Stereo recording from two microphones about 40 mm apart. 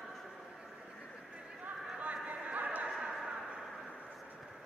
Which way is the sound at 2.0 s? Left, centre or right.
Right.